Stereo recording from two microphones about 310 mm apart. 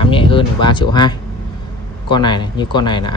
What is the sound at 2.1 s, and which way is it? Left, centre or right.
Speech, centre.